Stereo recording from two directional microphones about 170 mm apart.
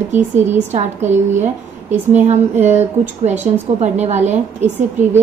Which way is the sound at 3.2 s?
40° right (ahead or behind).